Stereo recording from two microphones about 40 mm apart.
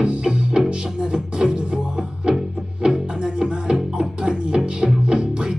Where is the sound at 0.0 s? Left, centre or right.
Right.